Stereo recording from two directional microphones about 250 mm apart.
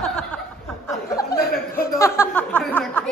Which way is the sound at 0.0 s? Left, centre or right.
Centre.